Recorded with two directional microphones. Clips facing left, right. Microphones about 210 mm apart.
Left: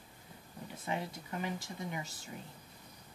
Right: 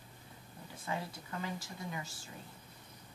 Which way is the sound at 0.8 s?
20° left (ahead or behind).